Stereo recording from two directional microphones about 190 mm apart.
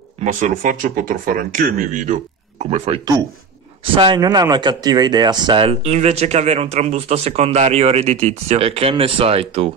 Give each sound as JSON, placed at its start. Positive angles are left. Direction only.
{"t": 0.2, "sound": "speech", "side_deg": -45}